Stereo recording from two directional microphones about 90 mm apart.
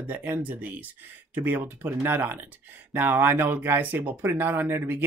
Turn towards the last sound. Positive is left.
turn(degrees=-25)  # may be behind; listen again after turning